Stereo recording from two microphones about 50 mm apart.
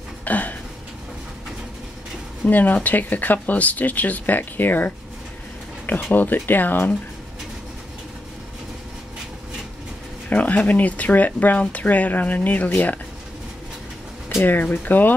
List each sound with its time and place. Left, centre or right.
0.2 s a sound: left
2.4 s speech: left
10.3 s speech: left
14.4 s speech: left